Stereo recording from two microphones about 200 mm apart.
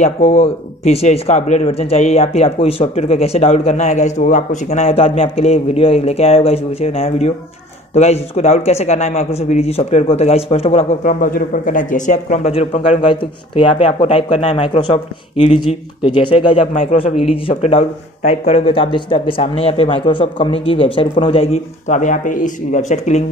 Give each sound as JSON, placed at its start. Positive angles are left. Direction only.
{"t": 0.0, "sound": "a man's voice", "side_deg": 30}